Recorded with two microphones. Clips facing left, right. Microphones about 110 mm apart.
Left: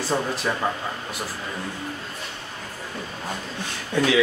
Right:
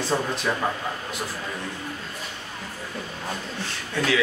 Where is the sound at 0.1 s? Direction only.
Centre (ahead or behind).